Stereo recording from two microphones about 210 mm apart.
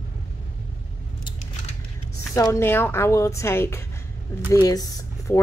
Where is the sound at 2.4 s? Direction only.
10° left (ahead or behind).